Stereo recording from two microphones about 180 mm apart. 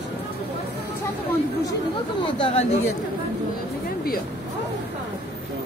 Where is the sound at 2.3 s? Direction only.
30° left (ahead or behind).